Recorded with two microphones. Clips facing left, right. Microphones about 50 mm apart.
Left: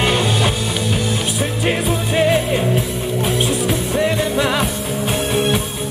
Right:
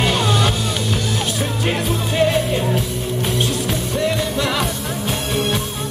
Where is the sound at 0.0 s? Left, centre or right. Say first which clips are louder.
Left 1 dB; centre.